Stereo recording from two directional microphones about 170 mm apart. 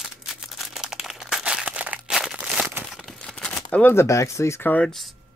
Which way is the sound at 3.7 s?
10° left (ahead or behind).